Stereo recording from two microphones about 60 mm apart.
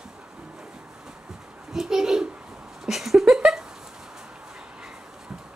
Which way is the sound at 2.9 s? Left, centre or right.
Centre.